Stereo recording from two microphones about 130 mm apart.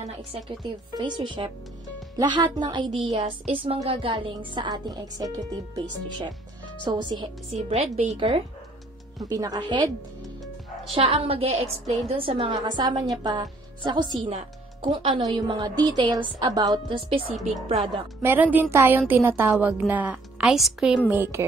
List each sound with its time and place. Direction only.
0.5 s a woman's voice: 35° right (ahead or behind)
7.5 s a woman's voice: 55° right (ahead or behind)
9.2 s speech: 30° right (ahead or behind)
11.0 s a woman's voice: 45° right (ahead or behind)
17.4 s a woman's voice: centre (ahead or behind)
18.2 s a woman's voice: 15° right (ahead or behind)
21.1 s speech: 20° right (ahead or behind)